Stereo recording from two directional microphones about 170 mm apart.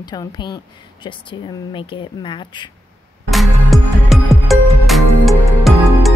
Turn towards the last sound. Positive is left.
turn(degrees=0)  # may be behind; listen again after turning